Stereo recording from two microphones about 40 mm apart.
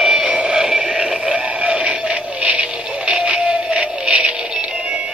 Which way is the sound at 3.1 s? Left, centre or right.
Right.